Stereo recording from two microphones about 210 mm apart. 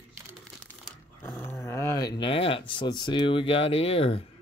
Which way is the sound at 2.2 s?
25° left (ahead or behind).